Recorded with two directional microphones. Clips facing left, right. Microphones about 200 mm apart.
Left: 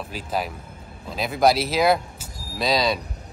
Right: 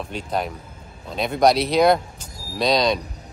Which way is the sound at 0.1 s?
5° left (ahead or behind).